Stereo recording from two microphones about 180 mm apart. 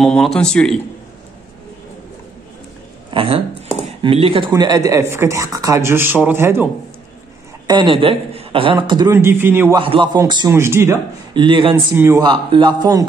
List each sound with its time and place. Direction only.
0.0 s speech: centre (ahead or behind)
3.1 s speech: 30° right (ahead or behind); by 6.7 s 15° right (ahead or behind)
7.6 s a woman's voice: 25° right (ahead or behind)
9.8 s a man's voice: 25° right (ahead or behind)
11.3 s a man's voice: 25° right (ahead or behind)